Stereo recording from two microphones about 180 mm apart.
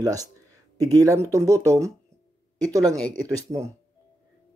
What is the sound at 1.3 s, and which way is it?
Speech, 20° right (ahead or behind).